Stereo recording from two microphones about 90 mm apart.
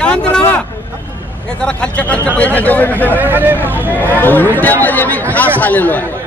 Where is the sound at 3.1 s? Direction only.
20° right (ahead or behind).